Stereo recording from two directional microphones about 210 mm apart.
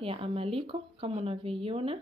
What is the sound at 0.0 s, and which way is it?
Speech, 25° right (ahead or behind).